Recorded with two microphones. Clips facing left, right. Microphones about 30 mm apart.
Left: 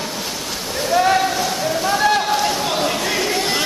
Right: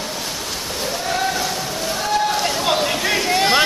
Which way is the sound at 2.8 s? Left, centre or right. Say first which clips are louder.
Even; centre.